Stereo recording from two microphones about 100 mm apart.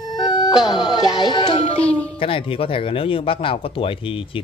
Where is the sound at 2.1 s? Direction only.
60° left (ahead or behind).